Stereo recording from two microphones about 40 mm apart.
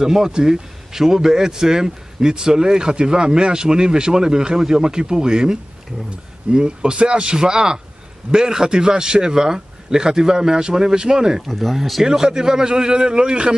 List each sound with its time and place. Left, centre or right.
0.0 s a man's voice: centre
11.4 s speech: centre
12.0 s a man's voice: centre